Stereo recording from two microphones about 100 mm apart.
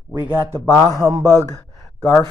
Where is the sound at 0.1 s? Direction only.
20° right (ahead or behind).